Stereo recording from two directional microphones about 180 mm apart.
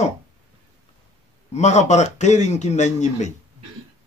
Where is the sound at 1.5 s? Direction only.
40° left (ahead or behind).